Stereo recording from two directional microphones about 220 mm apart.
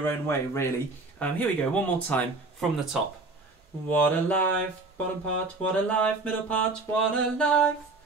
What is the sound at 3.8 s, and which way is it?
Speech, 5° left (ahead or behind).